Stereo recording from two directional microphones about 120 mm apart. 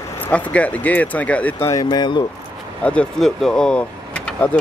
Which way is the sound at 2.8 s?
5° left (ahead or behind).